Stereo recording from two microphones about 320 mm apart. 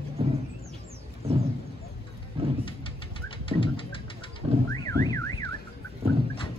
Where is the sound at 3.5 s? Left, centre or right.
Centre.